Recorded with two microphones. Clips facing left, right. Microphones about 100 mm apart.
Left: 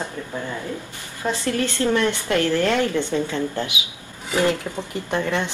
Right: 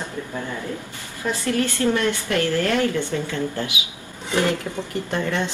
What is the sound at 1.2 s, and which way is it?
Speech, 25° left (ahead or behind).